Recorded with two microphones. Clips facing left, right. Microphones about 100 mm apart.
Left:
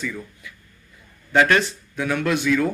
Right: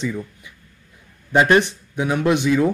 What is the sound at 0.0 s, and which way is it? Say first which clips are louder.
Speech: right 5 dB; 20° right (ahead or behind).